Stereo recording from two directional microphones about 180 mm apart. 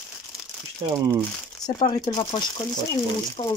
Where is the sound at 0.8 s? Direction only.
30° right (ahead or behind).